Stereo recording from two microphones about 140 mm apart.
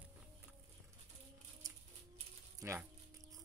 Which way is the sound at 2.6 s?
20° right (ahead or behind).